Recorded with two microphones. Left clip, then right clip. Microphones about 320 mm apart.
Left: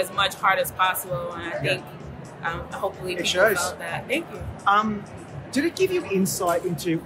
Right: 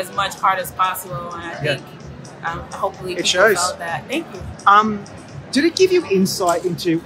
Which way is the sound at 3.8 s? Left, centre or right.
Centre.